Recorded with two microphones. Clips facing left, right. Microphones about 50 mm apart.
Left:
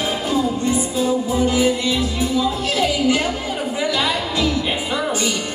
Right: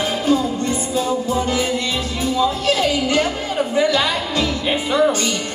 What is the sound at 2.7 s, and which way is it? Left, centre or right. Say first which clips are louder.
Speech: right 1 dB; centre.